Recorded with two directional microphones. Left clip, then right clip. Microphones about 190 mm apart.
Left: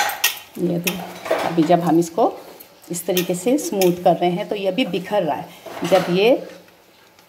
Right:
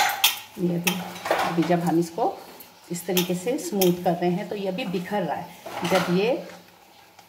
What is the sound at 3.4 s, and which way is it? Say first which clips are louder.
A woman's voice: left 7 dB; 30° left (ahead or behind).